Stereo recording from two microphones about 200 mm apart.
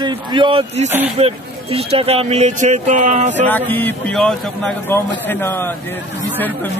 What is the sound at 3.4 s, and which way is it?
Speech, 10° left (ahead or behind).